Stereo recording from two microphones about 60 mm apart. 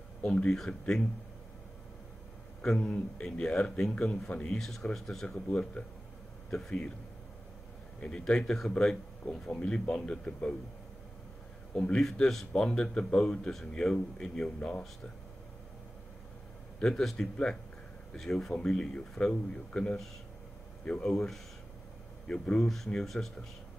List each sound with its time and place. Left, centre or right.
0.2 s a man's voice: centre
2.8 s a man's voice: centre
4.6 s a man's voice: centre
8.0 s a man's voice: centre
9.6 s a man's voice: left
11.7 s a man's voice: centre
12.0 s a man's voice: centre
16.8 s a man's voice: centre